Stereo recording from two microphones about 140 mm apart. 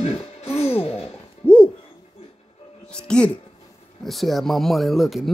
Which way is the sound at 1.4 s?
10° left (ahead or behind).